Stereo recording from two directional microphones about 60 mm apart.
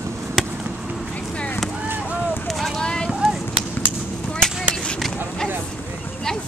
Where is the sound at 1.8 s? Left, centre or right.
Right.